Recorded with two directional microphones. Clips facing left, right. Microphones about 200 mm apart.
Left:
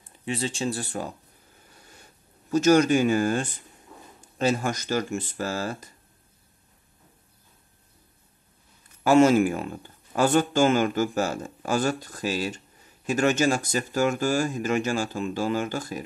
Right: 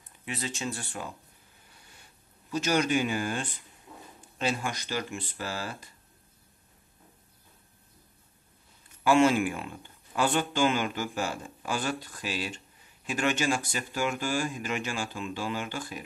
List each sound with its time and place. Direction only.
0.0 s speech: 30° left (ahead or behind)
2.5 s speech: 45° left (ahead or behind)
9.0 s speech: 40° left (ahead or behind)